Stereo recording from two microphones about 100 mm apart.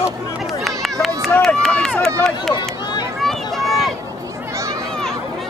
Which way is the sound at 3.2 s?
5° left (ahead or behind).